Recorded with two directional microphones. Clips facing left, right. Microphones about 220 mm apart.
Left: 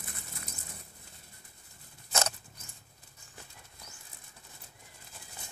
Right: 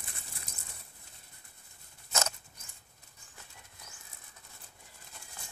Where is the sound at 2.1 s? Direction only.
35° left (ahead or behind).